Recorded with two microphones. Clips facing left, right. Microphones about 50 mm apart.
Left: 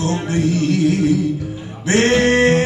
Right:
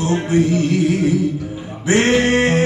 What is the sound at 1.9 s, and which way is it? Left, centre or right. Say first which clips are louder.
Music: even; centre.